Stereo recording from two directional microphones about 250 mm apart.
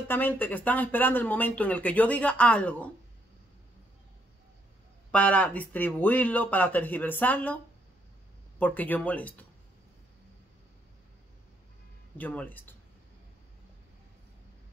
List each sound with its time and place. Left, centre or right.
0.1 s speech: centre
5.1 s speech: centre
8.5 s speech: centre
12.2 s speech: centre